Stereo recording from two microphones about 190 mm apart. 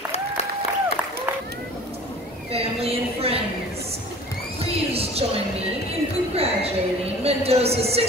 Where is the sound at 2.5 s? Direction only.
30° right (ahead or behind).